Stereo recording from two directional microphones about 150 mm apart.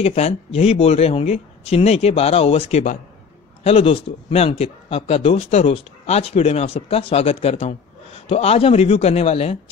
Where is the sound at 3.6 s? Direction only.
40° left (ahead or behind).